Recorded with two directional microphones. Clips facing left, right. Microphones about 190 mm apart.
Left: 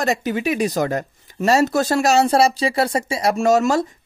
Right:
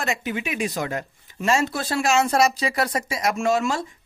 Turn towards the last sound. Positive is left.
turn(degrees=40)  # may be behind; listen again after turning